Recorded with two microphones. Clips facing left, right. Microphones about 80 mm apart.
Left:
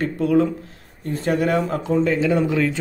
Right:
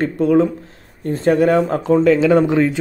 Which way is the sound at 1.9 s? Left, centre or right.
Right.